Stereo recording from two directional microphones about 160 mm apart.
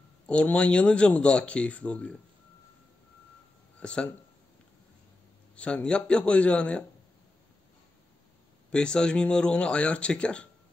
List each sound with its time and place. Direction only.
0.3 s speech: 5° left (ahead or behind)
3.8 s speech: 5° left (ahead or behind)
5.6 s speech: 5° left (ahead or behind)
8.7 s speech: 5° left (ahead or behind)